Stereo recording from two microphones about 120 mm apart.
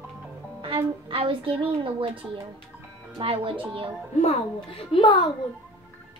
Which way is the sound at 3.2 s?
45° right (ahead or behind).